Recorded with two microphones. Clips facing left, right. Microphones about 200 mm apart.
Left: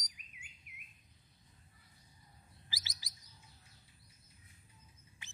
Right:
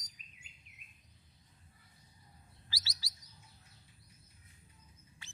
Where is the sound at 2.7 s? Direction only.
20° left (ahead or behind).